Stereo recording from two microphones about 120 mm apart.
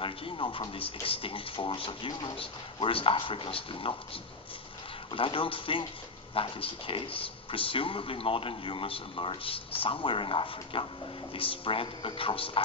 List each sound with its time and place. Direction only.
0.0 s speech: 45° left (ahead or behind)
5.1 s speech: 45° left (ahead or behind)